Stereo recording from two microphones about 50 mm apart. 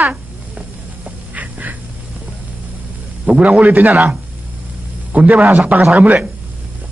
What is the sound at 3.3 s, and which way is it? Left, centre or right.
A woman's voice, right.